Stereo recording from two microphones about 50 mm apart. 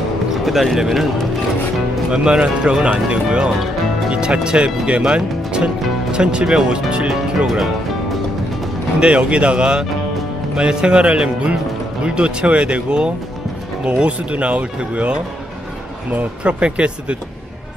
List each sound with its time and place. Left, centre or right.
0.3 s speech: centre
2.0 s speech: right
7.4 s speech: centre
9.0 s speech: right